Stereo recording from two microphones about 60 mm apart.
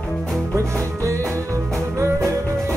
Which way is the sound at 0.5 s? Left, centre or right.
Right.